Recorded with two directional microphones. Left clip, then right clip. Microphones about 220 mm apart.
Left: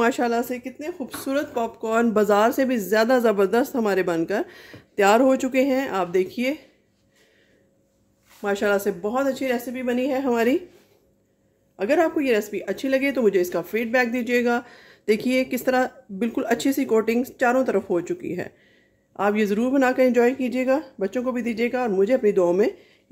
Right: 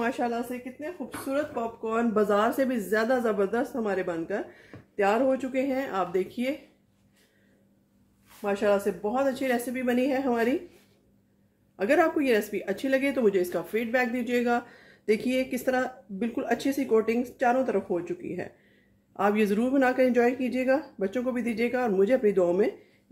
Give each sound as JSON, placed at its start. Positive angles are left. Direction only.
{"t": 0.0, "sound": "speech", "side_deg": 35}
{"t": 8.4, "sound": "speech", "side_deg": 40}
{"t": 10.3, "sound": "speech", "side_deg": 35}
{"t": 11.7, "sound": "speech", "side_deg": 15}
{"t": 19.1, "sound": "speech", "side_deg": 15}